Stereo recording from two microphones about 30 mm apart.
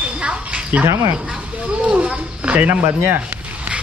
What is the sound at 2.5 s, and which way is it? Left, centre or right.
Speech, right.